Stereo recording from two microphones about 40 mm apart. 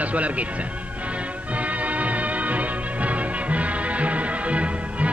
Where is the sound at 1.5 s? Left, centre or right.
Right.